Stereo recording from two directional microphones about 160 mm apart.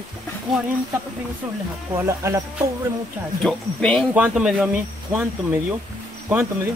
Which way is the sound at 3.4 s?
5° left (ahead or behind).